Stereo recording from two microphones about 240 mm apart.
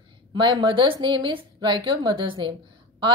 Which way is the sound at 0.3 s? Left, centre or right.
Centre.